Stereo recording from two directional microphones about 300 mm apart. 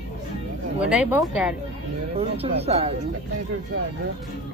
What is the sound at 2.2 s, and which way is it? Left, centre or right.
Speech, centre.